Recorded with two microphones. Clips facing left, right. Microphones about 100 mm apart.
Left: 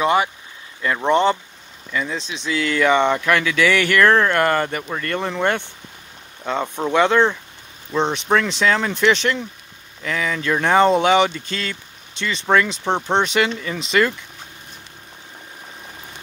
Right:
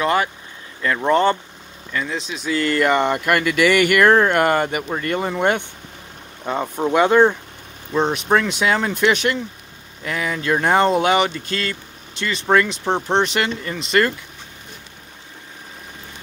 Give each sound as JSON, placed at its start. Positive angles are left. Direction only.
{"t": 0.0, "sound": "speech", "side_deg": 20}
{"t": 1.9, "sound": "speech", "side_deg": 0}